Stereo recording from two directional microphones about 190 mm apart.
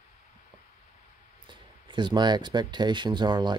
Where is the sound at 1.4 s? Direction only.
25° right (ahead or behind).